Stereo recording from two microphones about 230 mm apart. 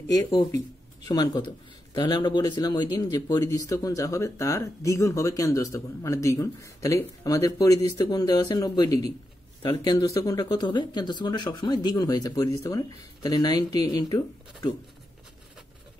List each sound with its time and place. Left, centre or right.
0.1 s speech: centre